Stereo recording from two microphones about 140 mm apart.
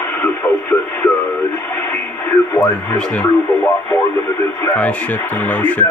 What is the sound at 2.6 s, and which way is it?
Speech, 5° left (ahead or behind).